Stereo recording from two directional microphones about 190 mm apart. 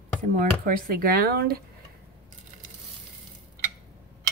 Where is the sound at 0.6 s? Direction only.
50° right (ahead or behind).